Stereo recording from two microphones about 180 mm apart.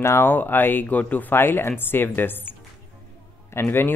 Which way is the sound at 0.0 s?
15° left (ahead or behind).